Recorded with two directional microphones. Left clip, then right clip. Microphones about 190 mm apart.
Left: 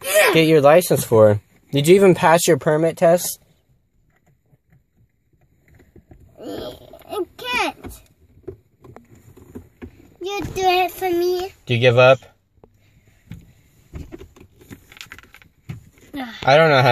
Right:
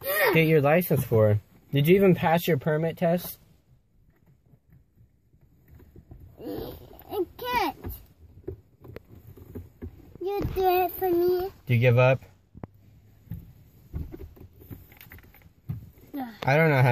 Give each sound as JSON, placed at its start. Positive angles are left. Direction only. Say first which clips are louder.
{"t": 0.0, "sound": "speech", "louder": "left 8 dB", "side_deg": 30}
{"t": 6.4, "sound": "a sound", "louder": "left 5 dB", "side_deg": 20}
{"t": 10.2, "sound": "child singing", "louder": "left 5 dB", "side_deg": 25}
{"t": 11.6, "sound": "speech", "louder": "left 10 dB", "side_deg": 30}
{"t": 15.0, "sound": "vehicle", "louder": "left 11 dB", "side_deg": -5}
{"t": 16.2, "sound": "speech", "louder": "left 10 dB", "side_deg": 20}